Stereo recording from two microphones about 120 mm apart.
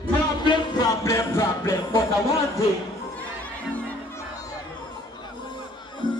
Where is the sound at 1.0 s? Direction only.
25° left (ahead or behind).